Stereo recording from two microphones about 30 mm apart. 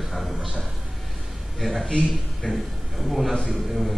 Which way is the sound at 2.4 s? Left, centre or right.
Left.